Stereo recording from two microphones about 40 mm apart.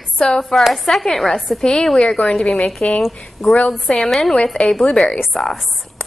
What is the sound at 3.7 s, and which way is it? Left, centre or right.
Speech, centre.